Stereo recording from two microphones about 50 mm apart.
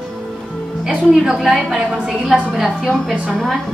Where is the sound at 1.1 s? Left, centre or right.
Centre.